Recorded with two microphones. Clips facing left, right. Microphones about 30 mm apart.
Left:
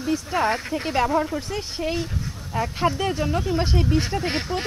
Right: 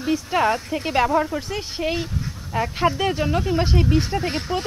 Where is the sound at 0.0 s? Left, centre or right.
Centre.